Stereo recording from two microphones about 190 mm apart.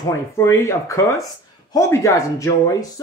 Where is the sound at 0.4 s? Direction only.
15° left (ahead or behind).